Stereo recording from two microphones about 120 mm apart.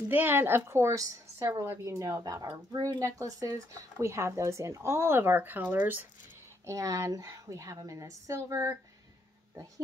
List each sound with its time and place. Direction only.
0.1 s speech: 15° right (ahead or behind)
6.6 s speech: 25° right (ahead or behind)